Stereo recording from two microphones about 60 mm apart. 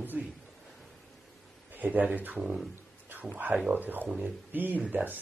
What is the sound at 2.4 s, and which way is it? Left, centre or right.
Speech, centre.